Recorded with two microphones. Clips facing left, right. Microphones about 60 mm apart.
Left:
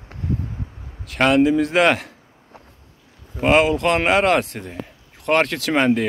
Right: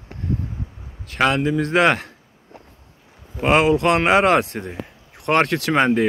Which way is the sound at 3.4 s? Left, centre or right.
Centre.